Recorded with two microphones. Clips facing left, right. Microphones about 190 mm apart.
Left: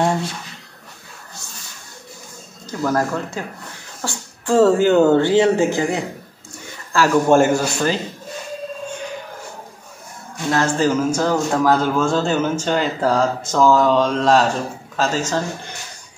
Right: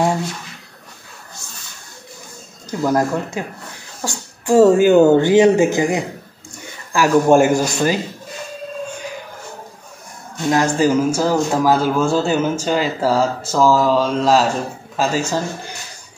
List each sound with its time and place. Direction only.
2.8 s a man's voice: 15° right (ahead or behind)
10.5 s a man's voice: 10° right (ahead or behind)